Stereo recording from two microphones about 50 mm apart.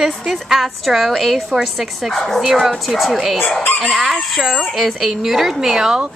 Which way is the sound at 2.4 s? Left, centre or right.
Centre.